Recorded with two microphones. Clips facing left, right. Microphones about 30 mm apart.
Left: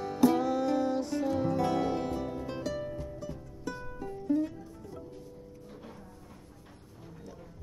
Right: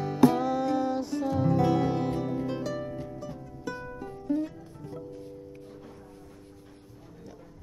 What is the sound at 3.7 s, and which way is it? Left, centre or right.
Music, right.